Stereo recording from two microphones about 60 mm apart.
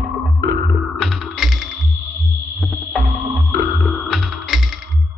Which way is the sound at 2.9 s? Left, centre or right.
Right.